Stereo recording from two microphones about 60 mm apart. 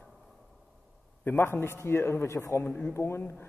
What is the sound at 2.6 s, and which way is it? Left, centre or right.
Speech, left.